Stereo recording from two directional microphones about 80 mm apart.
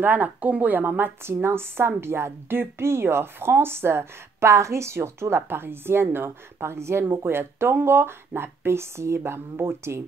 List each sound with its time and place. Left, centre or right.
0.0 s a woman's voice: right